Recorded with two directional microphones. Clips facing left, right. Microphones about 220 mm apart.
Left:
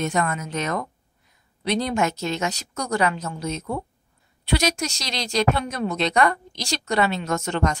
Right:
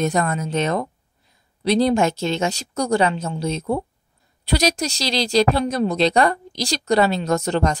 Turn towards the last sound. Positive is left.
turn(degrees=-35)  # may be behind; listen again after turning